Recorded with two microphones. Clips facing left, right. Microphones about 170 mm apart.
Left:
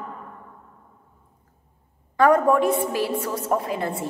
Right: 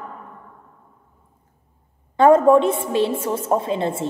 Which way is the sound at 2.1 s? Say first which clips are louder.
Right 5 dB; 25° right (ahead or behind).